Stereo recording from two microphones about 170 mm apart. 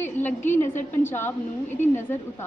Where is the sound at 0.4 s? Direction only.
45° left (ahead or behind).